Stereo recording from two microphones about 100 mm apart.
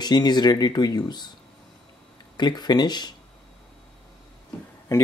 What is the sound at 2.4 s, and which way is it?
Speech, 45° left (ahead or behind).